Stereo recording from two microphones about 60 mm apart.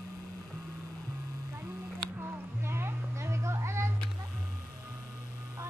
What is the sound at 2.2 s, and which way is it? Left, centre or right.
Music, right.